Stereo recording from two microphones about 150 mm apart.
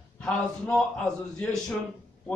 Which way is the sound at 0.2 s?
5° left (ahead or behind).